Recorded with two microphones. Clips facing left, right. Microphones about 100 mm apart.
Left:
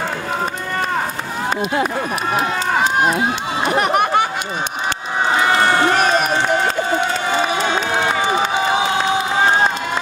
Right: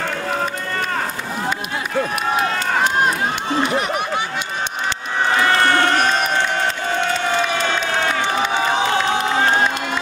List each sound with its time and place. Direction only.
3.7 s a sound: 60° left (ahead or behind)
5.3 s crowd: 15° left (ahead or behind)
7.6 s crowd: 10° left (ahead or behind)